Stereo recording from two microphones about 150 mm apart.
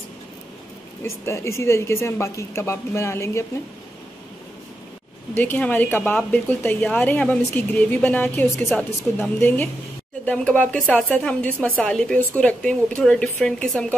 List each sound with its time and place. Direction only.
1.2 s speech: 20° left (ahead or behind)
5.3 s speech: 10° left (ahead or behind)